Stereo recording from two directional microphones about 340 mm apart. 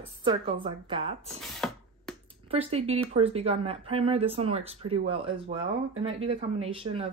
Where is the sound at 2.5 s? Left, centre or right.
Centre.